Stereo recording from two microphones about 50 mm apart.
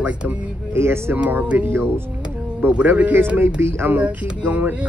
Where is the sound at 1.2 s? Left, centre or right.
Right.